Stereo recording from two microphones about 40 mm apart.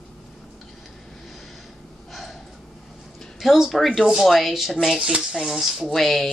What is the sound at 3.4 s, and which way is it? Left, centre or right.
Speech, centre.